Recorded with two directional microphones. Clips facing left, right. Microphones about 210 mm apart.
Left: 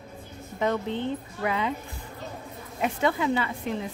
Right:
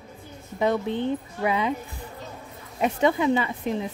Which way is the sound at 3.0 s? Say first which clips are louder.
Right 4 dB; 20° right (ahead or behind).